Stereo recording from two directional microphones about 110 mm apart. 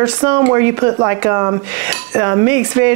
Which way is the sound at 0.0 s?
20° right (ahead or behind).